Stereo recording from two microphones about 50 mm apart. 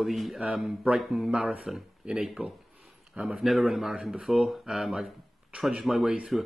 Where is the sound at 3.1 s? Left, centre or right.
Right.